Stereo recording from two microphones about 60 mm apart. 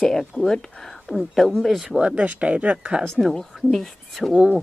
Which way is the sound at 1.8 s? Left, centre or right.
Centre.